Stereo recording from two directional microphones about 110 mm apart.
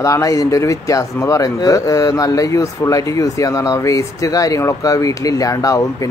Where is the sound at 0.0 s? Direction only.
30° left (ahead or behind).